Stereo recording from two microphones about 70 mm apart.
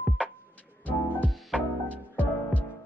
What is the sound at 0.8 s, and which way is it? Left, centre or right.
Music, left.